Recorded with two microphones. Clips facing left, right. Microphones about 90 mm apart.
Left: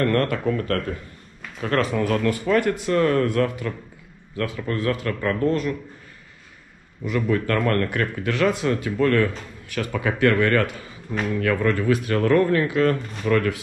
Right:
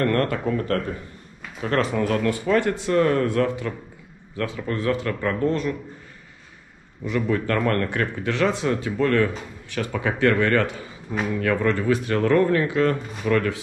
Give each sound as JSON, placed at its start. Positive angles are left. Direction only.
{"t": 0.1, "sound": "speech", "side_deg": -25}
{"t": 7.1, "sound": "speech", "side_deg": -30}
{"t": 12.9, "sound": "speech", "side_deg": -5}
{"t": 13.3, "sound": "speech", "side_deg": -30}